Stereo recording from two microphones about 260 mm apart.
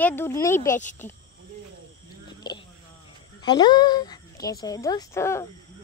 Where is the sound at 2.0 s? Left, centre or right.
Centre.